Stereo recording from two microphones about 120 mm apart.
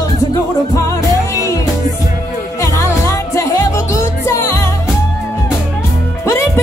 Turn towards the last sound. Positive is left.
turn(degrees=25)  # may be behind; listen again after turning